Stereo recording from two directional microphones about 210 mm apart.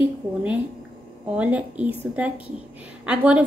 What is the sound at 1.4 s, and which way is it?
A woman's voice, 5° right (ahead or behind).